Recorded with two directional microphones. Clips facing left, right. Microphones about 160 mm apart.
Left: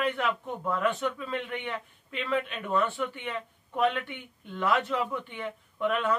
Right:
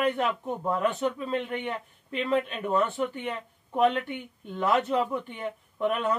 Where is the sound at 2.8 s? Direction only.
40° right (ahead or behind).